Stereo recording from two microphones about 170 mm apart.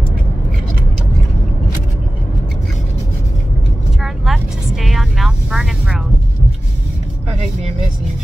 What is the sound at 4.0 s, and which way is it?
Speech, centre (ahead or behind).